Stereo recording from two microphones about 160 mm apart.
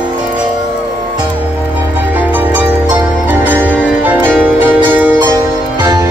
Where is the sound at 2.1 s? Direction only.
10° right (ahead or behind).